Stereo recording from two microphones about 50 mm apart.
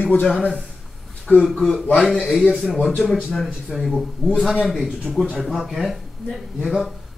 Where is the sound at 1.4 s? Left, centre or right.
Centre.